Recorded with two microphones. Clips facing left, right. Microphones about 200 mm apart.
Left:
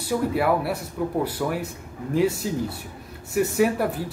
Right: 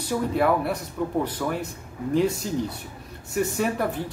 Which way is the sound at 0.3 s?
5° left (ahead or behind).